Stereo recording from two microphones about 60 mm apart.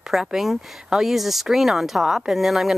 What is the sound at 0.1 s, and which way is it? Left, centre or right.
Speech, centre.